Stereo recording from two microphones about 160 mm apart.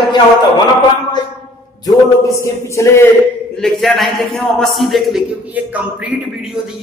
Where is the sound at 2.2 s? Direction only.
20° left (ahead or behind).